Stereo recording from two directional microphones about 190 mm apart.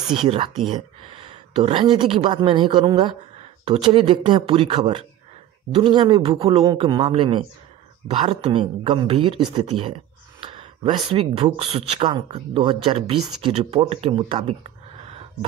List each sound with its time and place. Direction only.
0.2 s speech: 30° right (ahead or behind)